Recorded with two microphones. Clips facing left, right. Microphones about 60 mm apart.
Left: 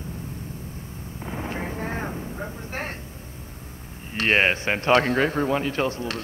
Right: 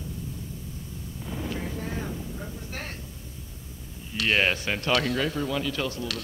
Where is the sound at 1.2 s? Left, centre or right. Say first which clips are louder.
Left 3 dB; left.